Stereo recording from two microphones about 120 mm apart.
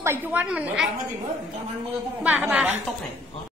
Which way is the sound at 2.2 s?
10° right (ahead or behind).